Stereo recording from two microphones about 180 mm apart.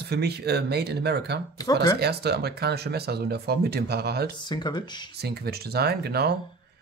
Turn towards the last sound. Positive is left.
turn(degrees=-60)  # may be behind; listen again after turning